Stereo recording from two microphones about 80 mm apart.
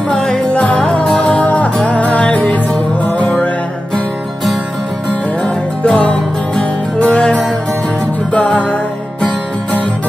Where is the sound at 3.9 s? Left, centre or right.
Centre.